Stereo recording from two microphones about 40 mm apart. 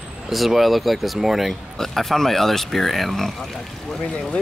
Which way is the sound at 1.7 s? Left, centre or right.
Centre.